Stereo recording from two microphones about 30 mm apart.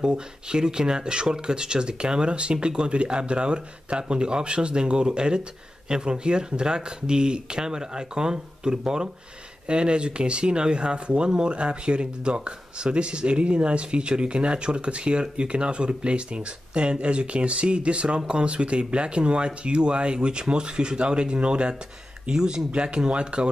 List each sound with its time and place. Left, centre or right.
0.0 s speech: right
22.3 s speech: right
22.7 s speech: right